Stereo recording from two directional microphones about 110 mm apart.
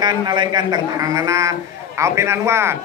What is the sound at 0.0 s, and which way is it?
A man's voice, 40° right (ahead or behind).